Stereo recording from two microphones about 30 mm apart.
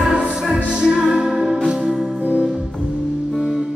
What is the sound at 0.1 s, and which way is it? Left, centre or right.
Music, right.